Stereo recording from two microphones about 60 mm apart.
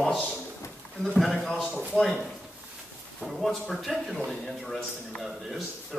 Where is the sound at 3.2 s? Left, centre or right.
Centre.